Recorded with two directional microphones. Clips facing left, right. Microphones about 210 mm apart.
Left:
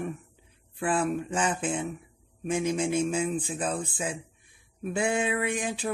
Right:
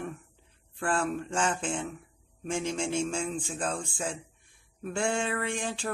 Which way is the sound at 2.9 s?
5° left (ahead or behind).